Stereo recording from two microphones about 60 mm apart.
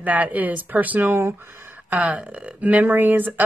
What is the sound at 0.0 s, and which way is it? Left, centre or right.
A woman's voice, right.